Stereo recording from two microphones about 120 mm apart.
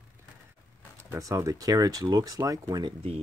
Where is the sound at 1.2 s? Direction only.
25° right (ahead or behind).